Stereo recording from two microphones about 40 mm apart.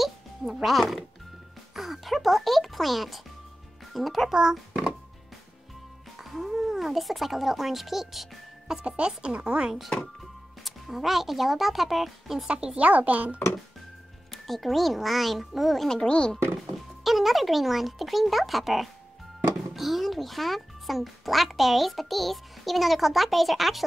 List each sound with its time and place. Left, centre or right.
0.7 s speech: centre
4.3 s a child's voice: centre
6.5 s speech: centre
8.8 s speech: right
10.6 s speech: centre
12.4 s speech: right
12.8 s speech: right
14.3 s speech: centre
16.0 s speech: left
16.7 s speech: centre